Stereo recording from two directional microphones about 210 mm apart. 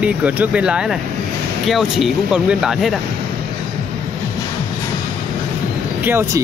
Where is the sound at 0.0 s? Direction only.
5° right (ahead or behind).